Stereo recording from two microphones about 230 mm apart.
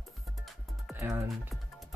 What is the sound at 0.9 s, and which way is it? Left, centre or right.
Speech, centre.